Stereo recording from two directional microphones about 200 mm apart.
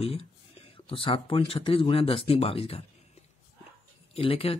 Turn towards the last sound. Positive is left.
turn(degrees=30)  # may be behind; listen again after turning